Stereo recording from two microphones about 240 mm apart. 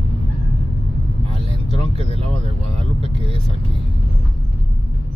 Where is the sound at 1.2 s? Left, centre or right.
Right.